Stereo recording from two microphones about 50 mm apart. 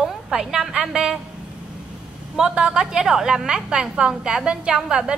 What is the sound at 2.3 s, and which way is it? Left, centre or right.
A woman's voice, centre.